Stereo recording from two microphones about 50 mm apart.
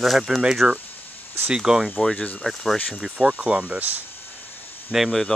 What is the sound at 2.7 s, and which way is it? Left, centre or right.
Speech, left.